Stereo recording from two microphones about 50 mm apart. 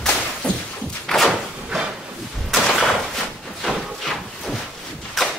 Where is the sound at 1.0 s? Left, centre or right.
Centre.